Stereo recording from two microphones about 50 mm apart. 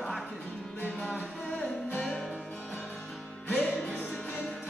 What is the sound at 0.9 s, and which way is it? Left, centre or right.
Music, left.